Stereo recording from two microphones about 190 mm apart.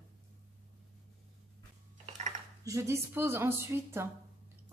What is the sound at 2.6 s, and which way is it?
A woman's voice, 15° right (ahead or behind).